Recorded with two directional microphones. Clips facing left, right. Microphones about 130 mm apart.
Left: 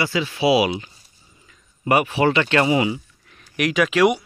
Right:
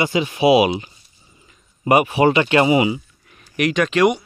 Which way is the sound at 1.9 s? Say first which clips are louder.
Right 3 dB; 15° right (ahead or behind).